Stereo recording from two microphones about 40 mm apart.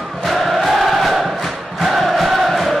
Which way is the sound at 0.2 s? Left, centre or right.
Centre.